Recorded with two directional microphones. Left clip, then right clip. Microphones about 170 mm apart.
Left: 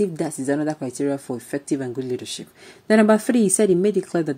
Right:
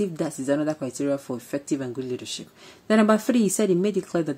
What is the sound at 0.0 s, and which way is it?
Speech, 10° left (ahead or behind).